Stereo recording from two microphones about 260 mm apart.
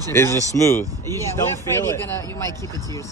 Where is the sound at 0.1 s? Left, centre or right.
Centre.